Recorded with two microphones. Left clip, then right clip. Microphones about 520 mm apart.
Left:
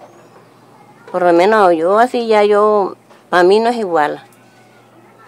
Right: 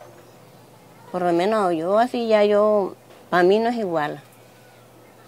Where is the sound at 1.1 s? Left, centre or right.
Right.